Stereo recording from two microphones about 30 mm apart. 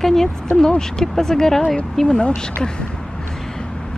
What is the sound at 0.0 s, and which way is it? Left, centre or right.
Speech, centre.